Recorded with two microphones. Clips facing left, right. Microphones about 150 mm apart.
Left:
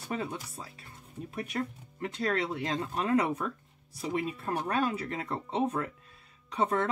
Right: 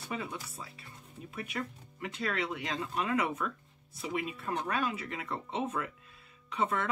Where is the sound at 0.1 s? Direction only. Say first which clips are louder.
Left 4 dB; 35° left (ahead or behind).